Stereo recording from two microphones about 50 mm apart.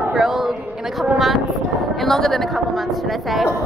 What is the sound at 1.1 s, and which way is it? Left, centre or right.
Speech, centre.